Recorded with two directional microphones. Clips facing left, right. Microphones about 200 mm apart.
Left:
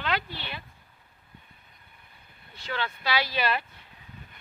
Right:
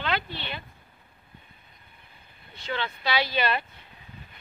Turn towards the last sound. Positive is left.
turn(degrees=5)  # may be behind; listen again after turning